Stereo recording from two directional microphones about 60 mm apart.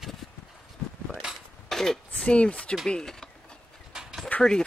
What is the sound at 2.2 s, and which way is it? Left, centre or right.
Speech, centre.